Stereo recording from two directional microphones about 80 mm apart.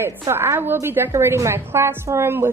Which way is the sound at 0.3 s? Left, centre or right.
Right.